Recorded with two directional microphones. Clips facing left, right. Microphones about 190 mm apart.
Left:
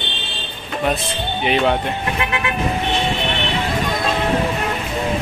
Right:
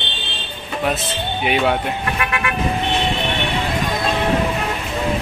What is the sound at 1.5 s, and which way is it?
Speech, 5° right (ahead or behind).